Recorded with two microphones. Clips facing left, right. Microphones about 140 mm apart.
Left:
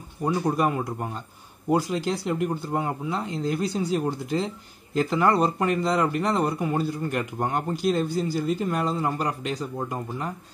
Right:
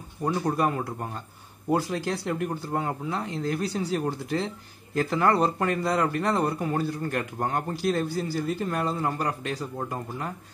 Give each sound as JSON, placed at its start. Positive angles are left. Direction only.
{"t": 0.2, "sound": "speech", "side_deg": 15}